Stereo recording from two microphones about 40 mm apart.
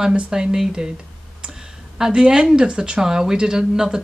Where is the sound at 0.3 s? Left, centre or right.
Centre.